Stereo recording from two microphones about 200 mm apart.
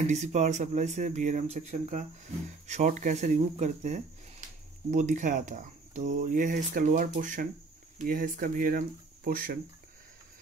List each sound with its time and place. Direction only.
0.0 s speech: 35° right (ahead or behind)